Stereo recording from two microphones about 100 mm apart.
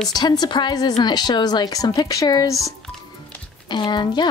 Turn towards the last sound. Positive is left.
turn(degrees=50)  # may be behind; listen again after turning